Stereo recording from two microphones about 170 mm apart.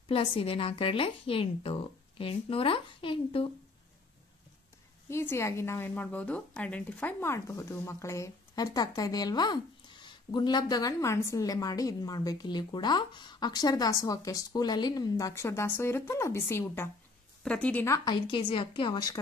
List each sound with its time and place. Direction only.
0.1 s speech: 30° left (ahead or behind)
5.1 s a woman's voice: 15° left (ahead or behind)